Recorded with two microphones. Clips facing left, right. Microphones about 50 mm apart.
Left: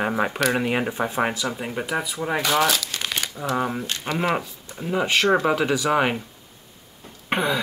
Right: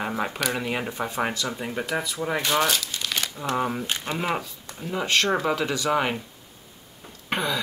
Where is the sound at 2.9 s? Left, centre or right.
Left.